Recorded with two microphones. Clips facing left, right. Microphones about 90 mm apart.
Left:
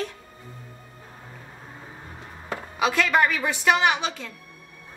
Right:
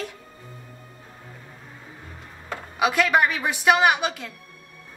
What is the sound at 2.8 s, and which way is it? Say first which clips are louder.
A woman's voice: right 1 dB; 15° right (ahead or behind).